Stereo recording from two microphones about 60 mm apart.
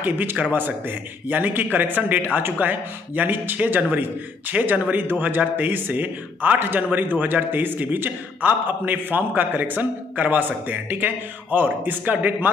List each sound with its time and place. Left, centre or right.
0.0 s a man's voice: right